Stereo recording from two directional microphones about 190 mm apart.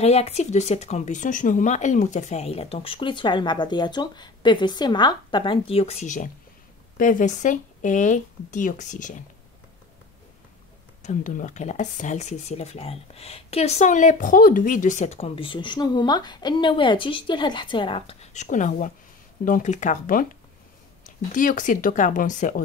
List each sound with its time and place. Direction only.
0.0 s speech: 35° left (ahead or behind)
11.0 s speech: 40° left (ahead or behind)